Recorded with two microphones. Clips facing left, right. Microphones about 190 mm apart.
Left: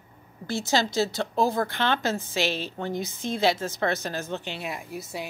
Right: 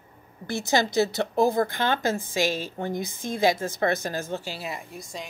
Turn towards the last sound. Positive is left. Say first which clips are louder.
# left 3 dB
turn(degrees=5)  # may be behind; listen again after turning